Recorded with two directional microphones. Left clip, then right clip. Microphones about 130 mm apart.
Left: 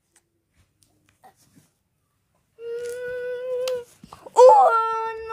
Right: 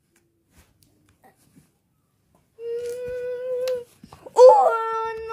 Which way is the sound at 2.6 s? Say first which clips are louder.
Right 1 dB; 45° left (ahead or behind).